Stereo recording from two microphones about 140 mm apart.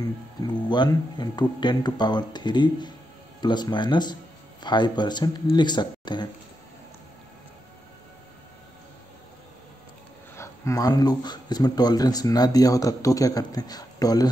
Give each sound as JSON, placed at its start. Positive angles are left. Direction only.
{"t": 0.7, "sound": "speech", "side_deg": 30}
{"t": 10.3, "sound": "speech", "side_deg": 20}